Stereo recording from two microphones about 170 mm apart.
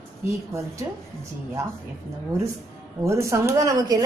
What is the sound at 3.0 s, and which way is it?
Speech, 15° right (ahead or behind).